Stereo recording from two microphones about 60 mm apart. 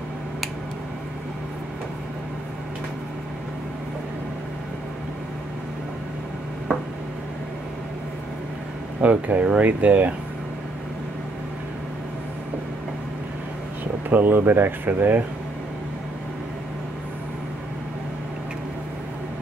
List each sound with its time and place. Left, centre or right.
9.0 s speech: right
14.0 s speech: right